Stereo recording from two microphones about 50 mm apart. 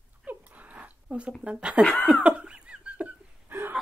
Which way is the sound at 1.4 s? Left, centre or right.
Right.